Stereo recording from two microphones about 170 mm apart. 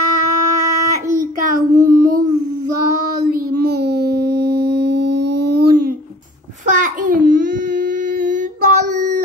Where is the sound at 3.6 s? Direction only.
75° right (ahead or behind).